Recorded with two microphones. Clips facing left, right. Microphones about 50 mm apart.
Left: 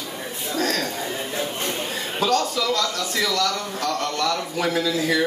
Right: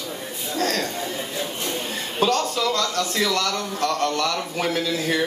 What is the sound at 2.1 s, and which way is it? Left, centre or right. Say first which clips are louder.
A man's voice: even; right.